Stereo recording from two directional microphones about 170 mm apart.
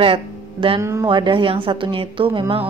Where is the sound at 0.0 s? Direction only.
30° right (ahead or behind).